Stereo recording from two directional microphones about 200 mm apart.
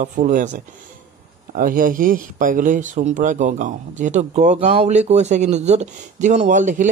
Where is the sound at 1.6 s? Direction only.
45° right (ahead or behind).